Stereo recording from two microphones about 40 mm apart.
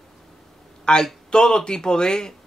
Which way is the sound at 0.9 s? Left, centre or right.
Left.